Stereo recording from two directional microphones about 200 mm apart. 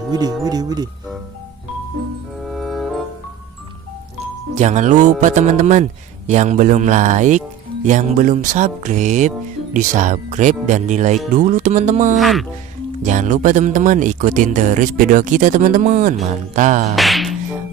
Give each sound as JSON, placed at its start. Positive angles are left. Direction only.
{"t": 0.1, "sound": "speech", "side_deg": -20}
{"t": 2.4, "sound": "music", "side_deg": 0}
{"t": 4.6, "sound": "speech", "side_deg": -35}
{"t": 12.2, "sound": "speech", "side_deg": 0}
{"t": 13.0, "sound": "speech", "side_deg": -40}
{"t": 16.9, "sound": "music", "side_deg": 0}